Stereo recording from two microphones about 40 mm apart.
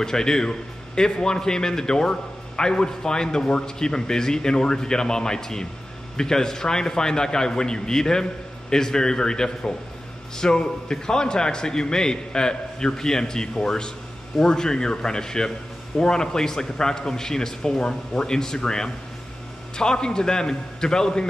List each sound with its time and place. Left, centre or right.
0.0 s a man's voice: centre